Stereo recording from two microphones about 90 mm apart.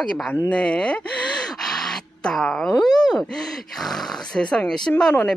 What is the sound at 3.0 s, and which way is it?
Speech, 5° left (ahead or behind).